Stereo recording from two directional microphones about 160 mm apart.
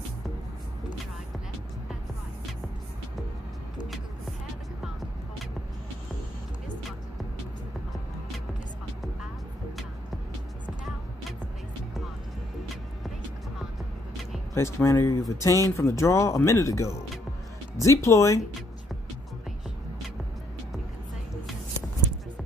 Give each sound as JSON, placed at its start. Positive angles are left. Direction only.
{"t": 14.5, "sound": "speech", "side_deg": 15}